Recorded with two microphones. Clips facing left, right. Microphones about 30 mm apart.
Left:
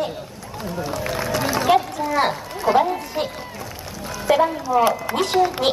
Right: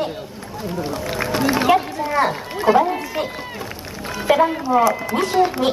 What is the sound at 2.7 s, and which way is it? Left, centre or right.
Speech, right.